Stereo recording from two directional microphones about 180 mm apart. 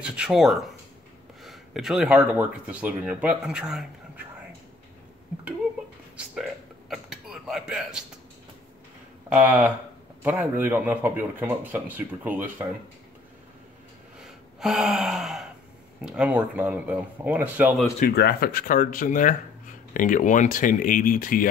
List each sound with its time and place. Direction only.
0.0 s speech: 5° right (ahead or behind)
6.9 s a sound: 5° right (ahead or behind)
9.3 s a man's voice: 10° right (ahead or behind)
14.2 s gasp: centre (ahead or behind)
16.0 s a man's voice: 5° right (ahead or behind)
18.1 s speech: 60° left (ahead or behind)